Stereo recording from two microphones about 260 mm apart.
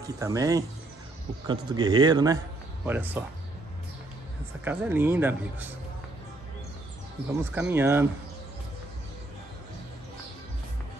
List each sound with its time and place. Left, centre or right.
0.0 s speech: centre
4.6 s speech: centre
7.5 s speech: centre